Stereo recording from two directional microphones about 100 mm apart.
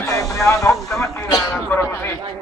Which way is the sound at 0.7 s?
Centre (ahead or behind).